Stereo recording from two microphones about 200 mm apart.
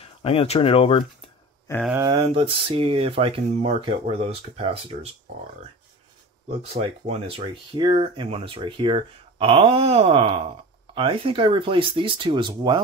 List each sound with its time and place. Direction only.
0.0 s speech: 30° left (ahead or behind)
1.9 s speech: 20° right (ahead or behind)
6.6 s speech: 30° right (ahead or behind)